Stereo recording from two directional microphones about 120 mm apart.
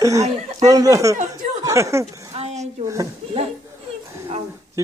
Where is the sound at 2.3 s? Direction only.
65° right (ahead or behind).